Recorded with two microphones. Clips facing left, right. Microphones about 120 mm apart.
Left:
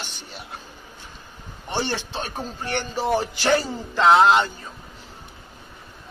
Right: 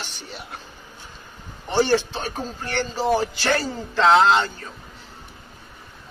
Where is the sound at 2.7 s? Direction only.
15° left (ahead or behind).